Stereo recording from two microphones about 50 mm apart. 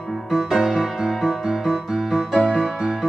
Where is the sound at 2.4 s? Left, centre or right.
Centre.